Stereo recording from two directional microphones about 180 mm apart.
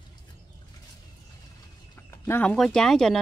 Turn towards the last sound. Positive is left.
turn(degrees=0)  # may be behind; listen again after turning